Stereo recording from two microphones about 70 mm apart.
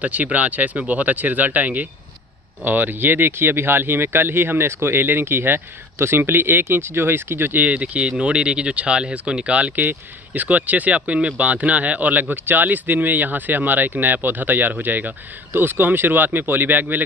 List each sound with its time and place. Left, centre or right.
0.0 s speech: right